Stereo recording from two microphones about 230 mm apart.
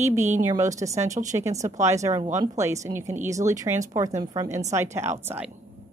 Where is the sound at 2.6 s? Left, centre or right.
Centre.